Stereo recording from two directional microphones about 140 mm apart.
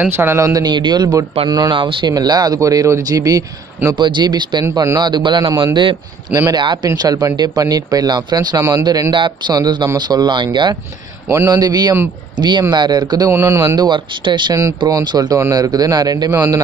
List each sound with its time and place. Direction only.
0.0 s speech: 15° right (ahead or behind); by 5.9 s 35° right (ahead or behind)
6.3 s speech: 25° right (ahead or behind)
11.2 s speech: 20° right (ahead or behind)
13.7 s speech: 30° right (ahead or behind)